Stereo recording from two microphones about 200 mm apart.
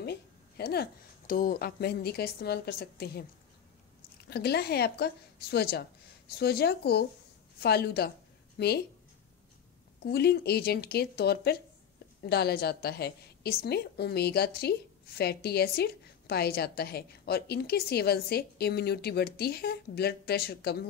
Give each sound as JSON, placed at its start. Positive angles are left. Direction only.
{"t": 0.0, "sound": "a woman's voice", "side_deg": 55}
{"t": 4.3, "sound": "a woman's voice", "side_deg": 55}
{"t": 10.0, "sound": "a woman's voice", "side_deg": 55}